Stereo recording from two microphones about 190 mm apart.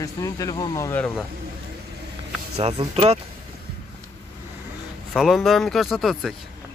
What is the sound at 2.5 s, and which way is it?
Speech, 30° right (ahead or behind).